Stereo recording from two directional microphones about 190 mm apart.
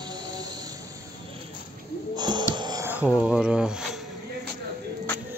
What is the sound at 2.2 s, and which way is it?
Music, 25° right (ahead or behind).